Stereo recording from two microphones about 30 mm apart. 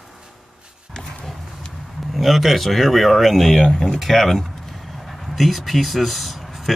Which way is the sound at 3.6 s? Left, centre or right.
Left.